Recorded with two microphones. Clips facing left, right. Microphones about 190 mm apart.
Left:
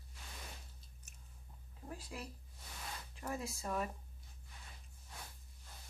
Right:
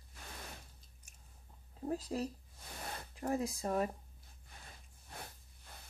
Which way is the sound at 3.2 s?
35° right (ahead or behind).